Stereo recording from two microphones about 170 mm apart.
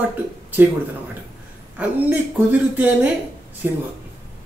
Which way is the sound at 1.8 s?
10° right (ahead or behind).